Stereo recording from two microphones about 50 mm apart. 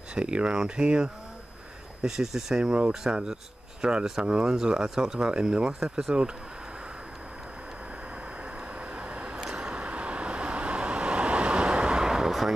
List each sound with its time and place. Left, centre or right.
0.1 s speech: right
2.0 s speech: centre
8.9 s vehicle: right
9.4 s vehicle: centre